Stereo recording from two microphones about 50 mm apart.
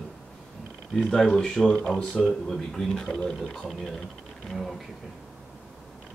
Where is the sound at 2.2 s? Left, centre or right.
Centre.